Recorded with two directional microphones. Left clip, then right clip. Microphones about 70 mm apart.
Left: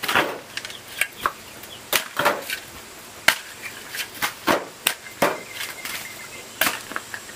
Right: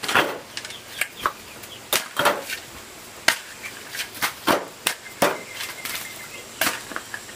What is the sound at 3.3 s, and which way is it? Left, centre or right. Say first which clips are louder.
Finger snapping: left 2 dB; left.